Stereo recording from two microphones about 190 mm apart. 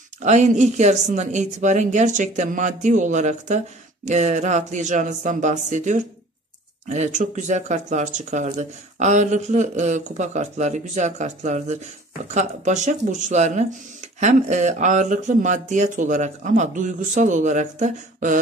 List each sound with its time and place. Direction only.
0.2 s speech: 40° right (ahead or behind)